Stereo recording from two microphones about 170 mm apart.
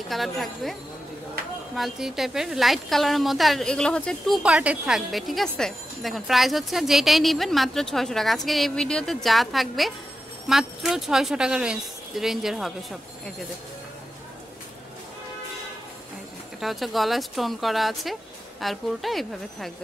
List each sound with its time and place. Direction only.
0.1 s speech: centre (ahead or behind)
1.8 s speech: centre (ahead or behind)
4.4 s speech: 5° right (ahead or behind)
16.5 s speech: centre (ahead or behind)